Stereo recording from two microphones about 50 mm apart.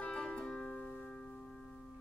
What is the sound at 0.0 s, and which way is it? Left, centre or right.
Music, left.